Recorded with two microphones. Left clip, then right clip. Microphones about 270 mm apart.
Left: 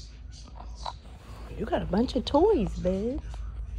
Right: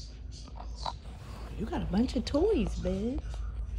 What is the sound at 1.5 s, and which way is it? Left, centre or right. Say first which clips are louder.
Speech: left 6 dB; left.